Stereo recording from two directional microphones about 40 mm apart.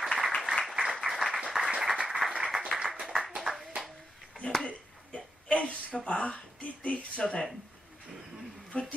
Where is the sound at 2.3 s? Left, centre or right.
Centre.